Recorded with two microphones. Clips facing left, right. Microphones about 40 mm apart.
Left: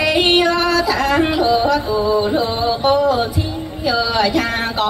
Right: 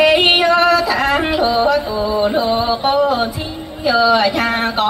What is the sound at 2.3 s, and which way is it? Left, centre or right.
Music, centre.